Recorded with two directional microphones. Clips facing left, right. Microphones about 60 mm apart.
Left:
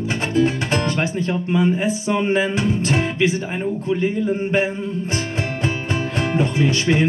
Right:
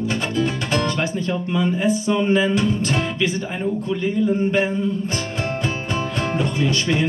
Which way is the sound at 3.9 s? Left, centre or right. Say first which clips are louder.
Left 1 dB; left.